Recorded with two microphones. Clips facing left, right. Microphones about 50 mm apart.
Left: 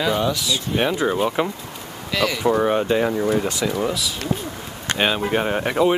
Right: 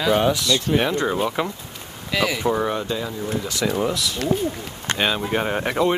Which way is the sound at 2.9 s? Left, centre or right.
Left.